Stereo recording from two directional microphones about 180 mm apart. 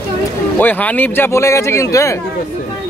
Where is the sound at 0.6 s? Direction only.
10° left (ahead or behind).